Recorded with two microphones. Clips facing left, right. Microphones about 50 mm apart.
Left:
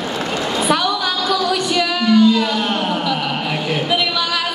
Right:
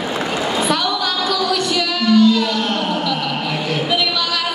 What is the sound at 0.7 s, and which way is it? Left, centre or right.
Singing, centre.